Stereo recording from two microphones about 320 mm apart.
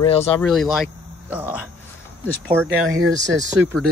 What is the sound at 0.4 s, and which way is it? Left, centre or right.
Speech, centre.